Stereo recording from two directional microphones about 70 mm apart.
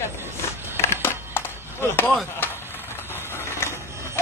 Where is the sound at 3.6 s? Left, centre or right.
Left.